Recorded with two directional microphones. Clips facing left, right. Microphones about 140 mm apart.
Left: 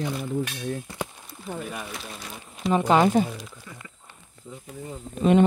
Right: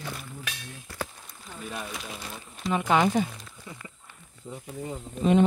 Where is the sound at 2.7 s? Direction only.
35° left (ahead or behind).